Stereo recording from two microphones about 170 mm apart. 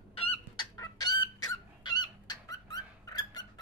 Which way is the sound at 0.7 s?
20° left (ahead or behind).